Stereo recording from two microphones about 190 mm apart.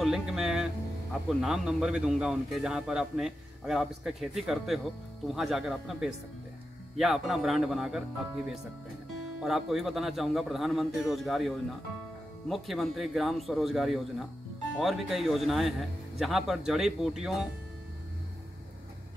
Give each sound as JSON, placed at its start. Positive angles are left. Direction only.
{"t": 0.0, "sound": "a man's voice", "side_deg": -5}
{"t": 9.4, "sound": "a man's voice", "side_deg": 0}